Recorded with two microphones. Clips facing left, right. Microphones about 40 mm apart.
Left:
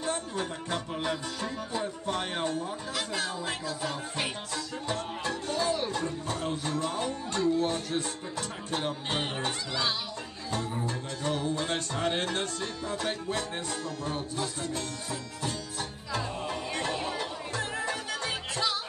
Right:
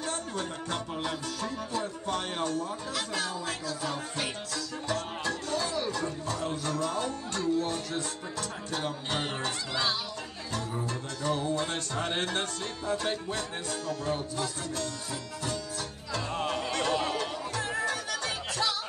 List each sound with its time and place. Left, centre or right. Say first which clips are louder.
0.4 s speech: left 1 dB; left
0.9 s music: left 2 dB; centre
1.4 s speech: even; left
4.8 s music: right 2 dB; left
10.5 s music: left 2 dB; left
12.0 s music: even; right
12.9 s music: right 1 dB; left
16.3 s music: right 3 dB; right
17.2 s music: right 1 dB; left